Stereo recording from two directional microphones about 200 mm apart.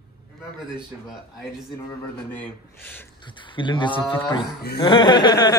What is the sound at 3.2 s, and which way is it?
Speech, 25° left (ahead or behind).